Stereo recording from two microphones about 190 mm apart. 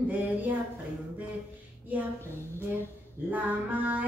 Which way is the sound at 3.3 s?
10° right (ahead or behind).